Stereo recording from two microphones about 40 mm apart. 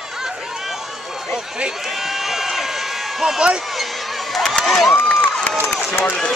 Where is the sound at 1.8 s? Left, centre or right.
Centre.